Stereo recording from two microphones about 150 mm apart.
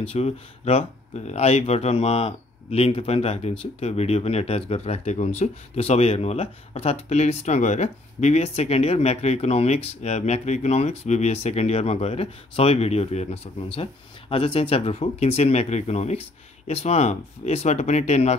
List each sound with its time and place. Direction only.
0.1 s speech: 40° left (ahead or behind)